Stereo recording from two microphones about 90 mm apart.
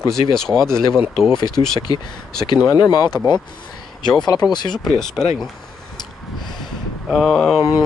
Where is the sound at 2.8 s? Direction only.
50° left (ahead or behind).